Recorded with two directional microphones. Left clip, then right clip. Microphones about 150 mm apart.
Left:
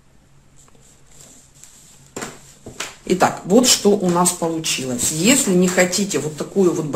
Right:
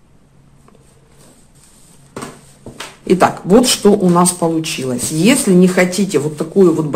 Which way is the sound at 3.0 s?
25° right (ahead or behind).